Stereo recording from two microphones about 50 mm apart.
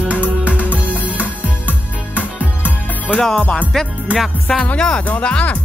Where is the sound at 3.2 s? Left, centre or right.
Centre.